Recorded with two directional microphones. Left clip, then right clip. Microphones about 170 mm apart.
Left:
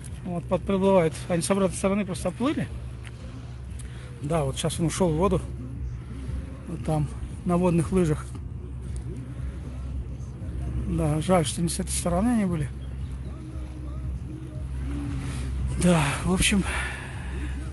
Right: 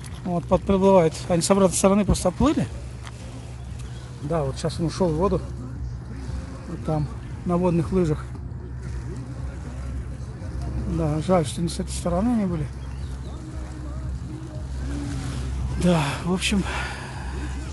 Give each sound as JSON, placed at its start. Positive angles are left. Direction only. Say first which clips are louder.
{"t": 0.3, "sound": "speech", "louder": "right 5 dB", "side_deg": -20}
{"t": 4.3, "sound": "speech", "louder": "right 1 dB", "side_deg": 5}
{"t": 6.9, "sound": "a man's voice", "louder": "right 2 dB", "side_deg": 0}
{"t": 11.0, "sound": "speech", "louder": "right 2 dB", "side_deg": -5}
{"t": 15.8, "sound": "a sound", "louder": "right 1 dB", "side_deg": 0}